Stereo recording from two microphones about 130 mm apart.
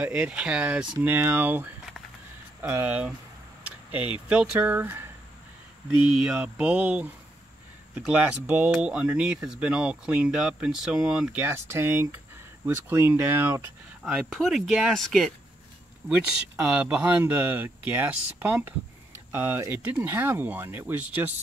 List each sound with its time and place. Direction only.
0.0 s speech: 10° right (ahead or behind)
6.1 s speech: 5° right (ahead or behind)
8.5 s speech: 10° right (ahead or behind)
11.4 s speech: 20° right (ahead or behind)
14.3 s speech: centre (ahead or behind)